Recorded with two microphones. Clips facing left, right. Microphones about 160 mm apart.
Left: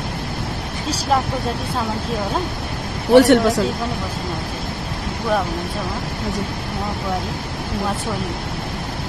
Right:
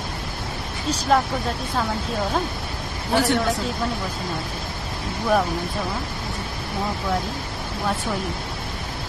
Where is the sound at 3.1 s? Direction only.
75° left (ahead or behind).